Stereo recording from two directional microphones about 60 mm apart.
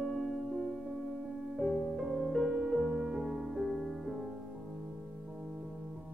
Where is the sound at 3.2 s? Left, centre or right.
Centre.